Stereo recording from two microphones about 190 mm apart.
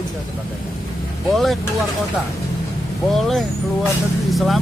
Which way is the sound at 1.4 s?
Centre (ahead or behind).